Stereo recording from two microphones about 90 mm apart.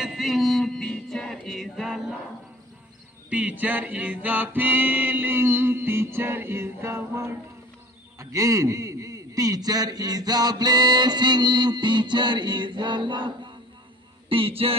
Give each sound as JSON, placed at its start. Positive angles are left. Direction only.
{"t": 0.0, "sound": "music", "side_deg": 0}
{"t": 3.3, "sound": "a capella", "side_deg": -15}
{"t": 8.2, "sound": "a man's voice", "side_deg": -35}
{"t": 14.3, "sound": "a sound", "side_deg": -90}